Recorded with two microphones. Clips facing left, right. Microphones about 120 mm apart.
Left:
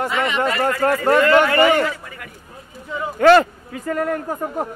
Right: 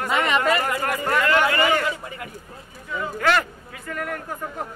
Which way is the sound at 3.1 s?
35° left (ahead or behind).